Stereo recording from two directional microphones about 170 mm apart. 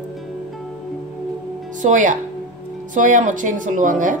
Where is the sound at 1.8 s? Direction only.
50° right (ahead or behind).